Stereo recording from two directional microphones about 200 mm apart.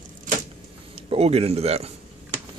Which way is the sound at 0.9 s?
30° right (ahead or behind).